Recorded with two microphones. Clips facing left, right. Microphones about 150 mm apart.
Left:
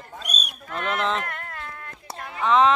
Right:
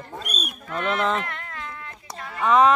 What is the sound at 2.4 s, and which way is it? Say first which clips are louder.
Speech: right 1 dB; 5° right (ahead or behind).